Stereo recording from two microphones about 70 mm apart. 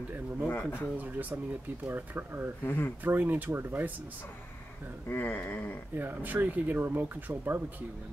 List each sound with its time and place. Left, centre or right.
0.5 s speech: left
0.7 s speech: right
2.6 s speech: left
3.0 s speech: right
5.1 s speech: left
5.9 s speech: right